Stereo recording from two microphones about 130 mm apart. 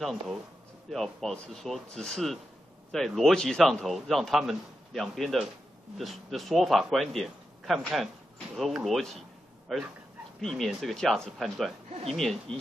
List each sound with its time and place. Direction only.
0.0 s speech: centre (ahead or behind)